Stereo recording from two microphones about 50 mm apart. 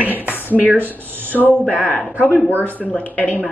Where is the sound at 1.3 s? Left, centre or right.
Left.